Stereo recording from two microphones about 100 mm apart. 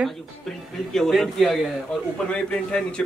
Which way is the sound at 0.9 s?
5° left (ahead or behind).